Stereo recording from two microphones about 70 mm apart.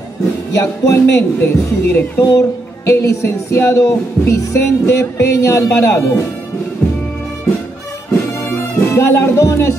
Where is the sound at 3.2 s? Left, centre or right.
Left.